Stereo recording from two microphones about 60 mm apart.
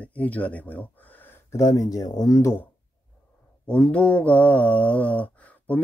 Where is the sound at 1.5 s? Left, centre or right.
Left.